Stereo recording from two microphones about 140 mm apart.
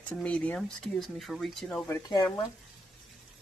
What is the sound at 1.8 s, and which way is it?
Speech, 20° left (ahead or behind).